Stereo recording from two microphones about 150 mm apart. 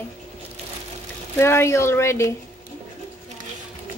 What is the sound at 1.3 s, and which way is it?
A woman's voice, 15° left (ahead or behind).